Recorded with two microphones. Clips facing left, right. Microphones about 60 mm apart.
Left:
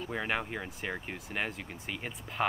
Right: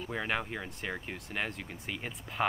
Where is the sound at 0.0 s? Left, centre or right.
Centre.